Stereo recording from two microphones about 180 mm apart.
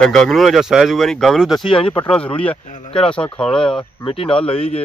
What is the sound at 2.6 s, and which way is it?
Speech, 45° left (ahead or behind).